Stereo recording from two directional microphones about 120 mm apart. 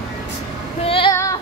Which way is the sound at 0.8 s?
50° left (ahead or behind).